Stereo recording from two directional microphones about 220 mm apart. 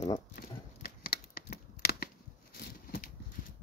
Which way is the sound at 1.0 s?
40° left (ahead or behind).